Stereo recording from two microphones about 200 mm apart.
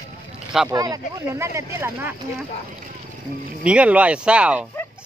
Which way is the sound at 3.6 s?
5° right (ahead or behind).